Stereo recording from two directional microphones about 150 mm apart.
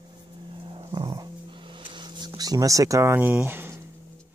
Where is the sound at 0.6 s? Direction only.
35° right (ahead or behind).